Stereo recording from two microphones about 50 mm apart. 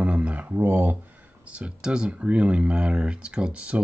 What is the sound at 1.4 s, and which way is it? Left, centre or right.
Speech, right.